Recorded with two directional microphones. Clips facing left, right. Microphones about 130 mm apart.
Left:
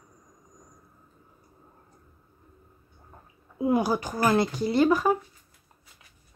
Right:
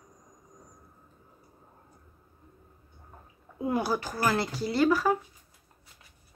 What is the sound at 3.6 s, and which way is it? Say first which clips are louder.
Speech: left 4 dB; 15° left (ahead or behind).